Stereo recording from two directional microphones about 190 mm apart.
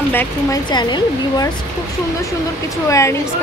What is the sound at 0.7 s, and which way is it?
Speech, 20° left (ahead or behind).